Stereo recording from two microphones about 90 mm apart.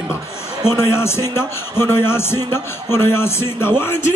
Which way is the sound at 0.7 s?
30° left (ahead or behind).